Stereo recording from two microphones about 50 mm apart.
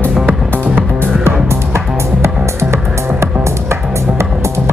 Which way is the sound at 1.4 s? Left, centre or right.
Right.